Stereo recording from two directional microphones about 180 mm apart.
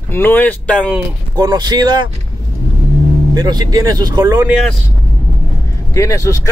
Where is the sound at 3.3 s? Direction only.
20° right (ahead or behind).